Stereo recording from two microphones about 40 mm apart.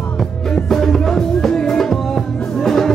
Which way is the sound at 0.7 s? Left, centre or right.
Centre.